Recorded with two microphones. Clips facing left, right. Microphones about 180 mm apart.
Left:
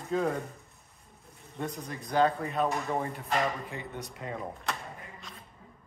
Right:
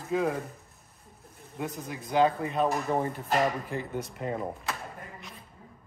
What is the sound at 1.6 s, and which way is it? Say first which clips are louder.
Speech: right 1 dB; 5° right (ahead or behind).